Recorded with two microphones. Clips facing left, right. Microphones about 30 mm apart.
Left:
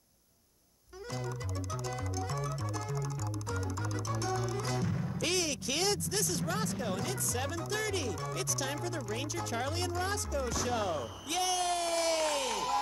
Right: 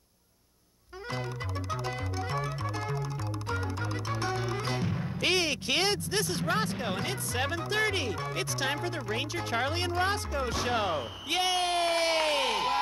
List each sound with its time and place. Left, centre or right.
1.7 s music: right